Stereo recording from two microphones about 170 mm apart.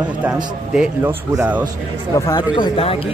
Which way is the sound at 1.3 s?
15° right (ahead or behind).